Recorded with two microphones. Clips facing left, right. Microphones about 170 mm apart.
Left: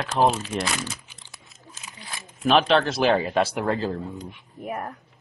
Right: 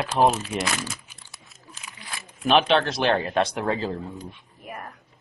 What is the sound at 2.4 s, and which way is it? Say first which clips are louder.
Speech: left 1 dB; centre (ahead or behind).